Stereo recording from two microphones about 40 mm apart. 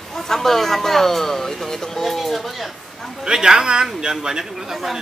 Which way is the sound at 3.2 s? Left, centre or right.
Centre.